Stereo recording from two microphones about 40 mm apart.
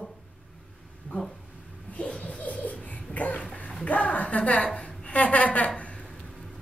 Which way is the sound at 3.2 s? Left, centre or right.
Left.